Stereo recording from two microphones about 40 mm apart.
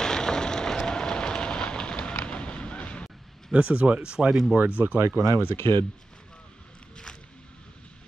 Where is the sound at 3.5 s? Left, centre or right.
Right.